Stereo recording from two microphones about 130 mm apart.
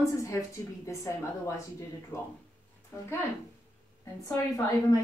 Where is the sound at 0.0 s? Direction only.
25° left (ahead or behind).